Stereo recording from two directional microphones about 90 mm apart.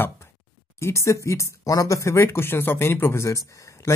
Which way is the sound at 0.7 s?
30° left (ahead or behind).